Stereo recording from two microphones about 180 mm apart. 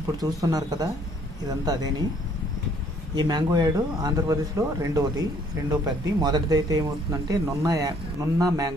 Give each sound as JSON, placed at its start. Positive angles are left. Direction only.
{"t": 0.2, "sound": "speech", "side_deg": -20}
{"t": 3.2, "sound": "speech", "side_deg": -25}